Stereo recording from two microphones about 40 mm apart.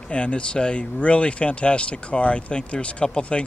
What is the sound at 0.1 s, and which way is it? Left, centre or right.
Speech, left.